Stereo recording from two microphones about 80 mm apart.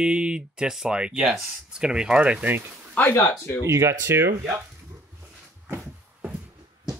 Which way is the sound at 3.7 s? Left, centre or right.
Right.